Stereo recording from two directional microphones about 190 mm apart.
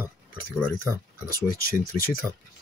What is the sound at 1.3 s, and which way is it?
Speech, 50° left (ahead or behind).